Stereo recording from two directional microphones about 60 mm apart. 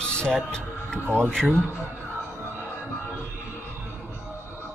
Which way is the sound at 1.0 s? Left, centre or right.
Right.